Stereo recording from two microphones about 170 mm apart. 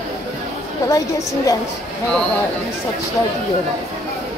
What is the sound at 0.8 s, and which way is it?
Speech, 20° left (ahead or behind).